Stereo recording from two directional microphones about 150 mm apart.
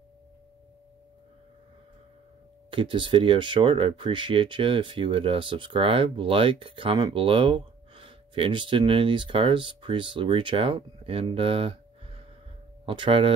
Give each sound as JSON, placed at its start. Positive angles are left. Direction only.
{"t": 2.7, "sound": "speech", "side_deg": -35}